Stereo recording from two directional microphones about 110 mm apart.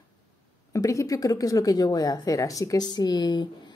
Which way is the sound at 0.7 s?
30° left (ahead or behind).